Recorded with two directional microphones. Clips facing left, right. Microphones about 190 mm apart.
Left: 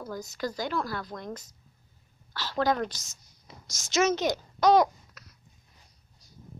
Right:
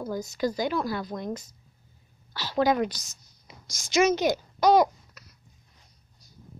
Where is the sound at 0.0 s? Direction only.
15° right (ahead or behind).